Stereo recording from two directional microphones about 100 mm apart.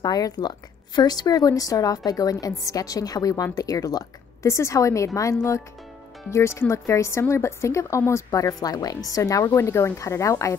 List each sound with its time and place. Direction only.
0.0 s speech: 40° left (ahead or behind)